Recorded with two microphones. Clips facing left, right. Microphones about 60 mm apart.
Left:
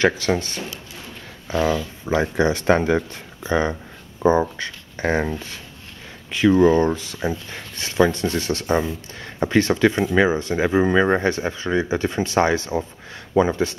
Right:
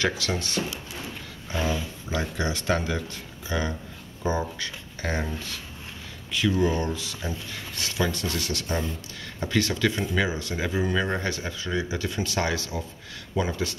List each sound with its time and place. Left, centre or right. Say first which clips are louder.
0.0 s speech: left 8 dB; left
2.0 s speech: left 10 dB; left
6.3 s speech: left 9 dB; left